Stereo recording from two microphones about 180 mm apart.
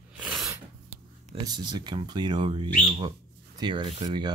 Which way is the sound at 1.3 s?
25° right (ahead or behind).